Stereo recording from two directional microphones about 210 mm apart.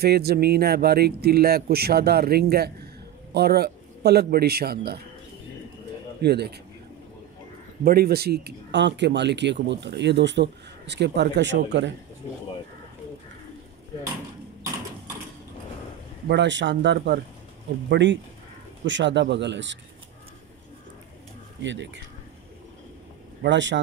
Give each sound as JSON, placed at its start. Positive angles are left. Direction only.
{"t": 0.0, "sound": "speech", "side_deg": -50}
{"t": 6.2, "sound": "speech", "side_deg": -50}
{"t": 7.8, "sound": "speech", "side_deg": -45}
{"t": 16.3, "sound": "speech", "side_deg": -55}
{"t": 21.6, "sound": "speech", "side_deg": -60}
{"t": 23.4, "sound": "speech", "side_deg": -55}